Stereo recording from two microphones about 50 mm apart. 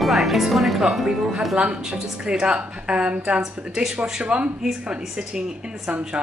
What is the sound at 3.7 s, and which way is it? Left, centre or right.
A woman's voice, centre.